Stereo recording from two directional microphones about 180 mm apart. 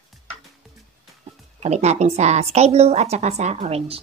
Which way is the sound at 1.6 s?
40° right (ahead or behind).